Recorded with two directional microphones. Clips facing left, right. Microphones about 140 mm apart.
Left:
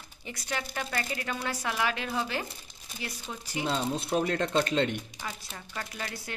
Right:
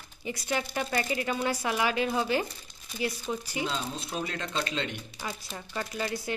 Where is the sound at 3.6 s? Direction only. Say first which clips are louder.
Left 5 dB; 45° left (ahead or behind).